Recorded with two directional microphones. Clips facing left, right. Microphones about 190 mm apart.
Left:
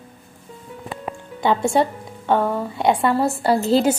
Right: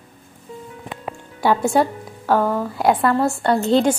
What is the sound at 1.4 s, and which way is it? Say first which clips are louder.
A woman's voice: right 1 dB; 5° right (ahead or behind).